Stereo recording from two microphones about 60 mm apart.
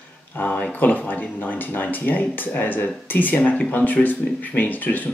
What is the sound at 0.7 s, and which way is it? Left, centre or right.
Speech, left.